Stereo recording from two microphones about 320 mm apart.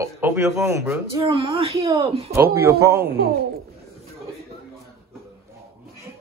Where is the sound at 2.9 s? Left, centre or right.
Right.